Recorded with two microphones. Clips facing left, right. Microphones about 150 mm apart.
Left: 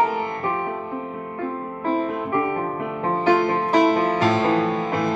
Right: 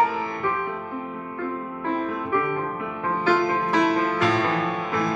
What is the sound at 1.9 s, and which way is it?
Music, 30° left (ahead or behind).